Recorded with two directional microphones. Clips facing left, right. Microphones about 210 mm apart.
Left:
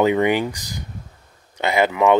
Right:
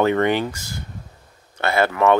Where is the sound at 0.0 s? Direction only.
15° left (ahead or behind).